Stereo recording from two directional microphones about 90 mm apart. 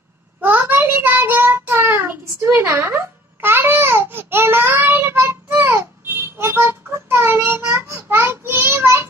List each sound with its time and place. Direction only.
0.4 s child singing: 25° right (ahead or behind)